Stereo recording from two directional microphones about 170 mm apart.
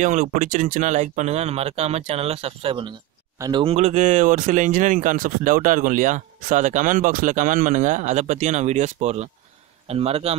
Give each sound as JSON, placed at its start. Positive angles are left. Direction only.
{"t": 0.0, "sound": "speech", "side_deg": -50}
{"t": 3.3, "sound": "speech", "side_deg": -20}
{"t": 3.6, "sound": "speech", "side_deg": -40}